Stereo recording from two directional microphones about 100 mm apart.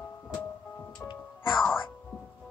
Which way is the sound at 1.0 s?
25° left (ahead or behind).